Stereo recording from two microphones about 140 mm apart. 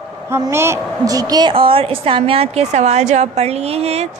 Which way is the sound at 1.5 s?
40° right (ahead or behind).